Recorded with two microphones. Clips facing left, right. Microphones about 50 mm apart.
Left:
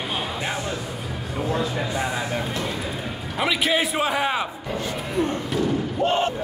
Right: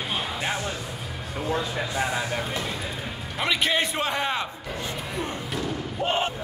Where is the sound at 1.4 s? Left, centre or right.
Centre.